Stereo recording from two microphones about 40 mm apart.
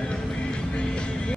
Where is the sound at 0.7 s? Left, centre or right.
Left.